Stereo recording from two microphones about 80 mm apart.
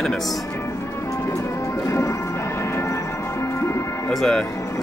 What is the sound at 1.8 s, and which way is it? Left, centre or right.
Music, left.